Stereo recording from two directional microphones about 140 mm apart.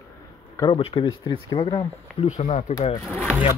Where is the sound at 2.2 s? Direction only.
55° left (ahead or behind).